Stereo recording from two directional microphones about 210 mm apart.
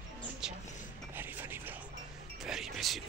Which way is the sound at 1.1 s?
10° right (ahead or behind).